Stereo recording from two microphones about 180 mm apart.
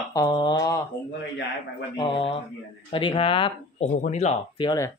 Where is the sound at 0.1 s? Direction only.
20° left (ahead or behind).